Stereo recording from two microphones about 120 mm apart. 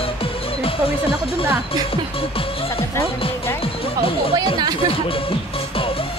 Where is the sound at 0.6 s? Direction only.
50° left (ahead or behind).